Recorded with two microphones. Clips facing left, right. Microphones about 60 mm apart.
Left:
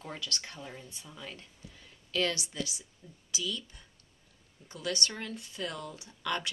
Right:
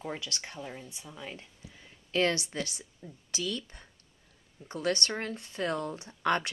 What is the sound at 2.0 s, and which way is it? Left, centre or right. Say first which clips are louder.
Speech: right 4 dB; right.